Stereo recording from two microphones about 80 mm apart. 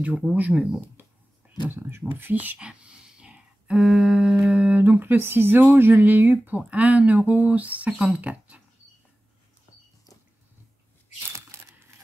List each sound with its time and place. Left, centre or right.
0.4 s speech: centre
1.7 s speech: right